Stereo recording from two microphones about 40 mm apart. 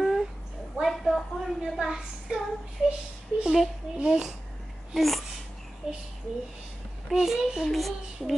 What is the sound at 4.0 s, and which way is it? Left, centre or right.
Babbling, right.